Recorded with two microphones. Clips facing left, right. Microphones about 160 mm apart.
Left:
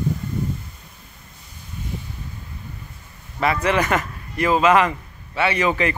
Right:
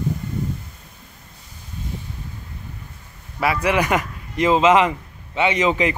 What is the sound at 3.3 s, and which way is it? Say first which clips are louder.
A man's voice: even; 10° right (ahead or behind).